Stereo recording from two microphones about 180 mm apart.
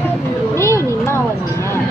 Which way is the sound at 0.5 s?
15° left (ahead or behind).